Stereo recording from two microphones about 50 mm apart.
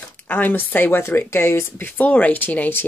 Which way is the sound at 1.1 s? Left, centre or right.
Left.